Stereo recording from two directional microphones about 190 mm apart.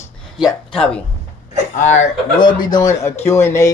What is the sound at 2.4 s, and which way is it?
Speech, 20° left (ahead or behind).